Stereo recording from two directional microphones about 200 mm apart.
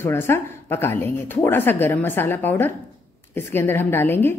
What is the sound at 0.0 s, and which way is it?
A woman's voice, 10° left (ahead or behind).